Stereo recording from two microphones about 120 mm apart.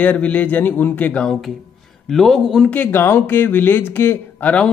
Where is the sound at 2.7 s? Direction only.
15° left (ahead or behind).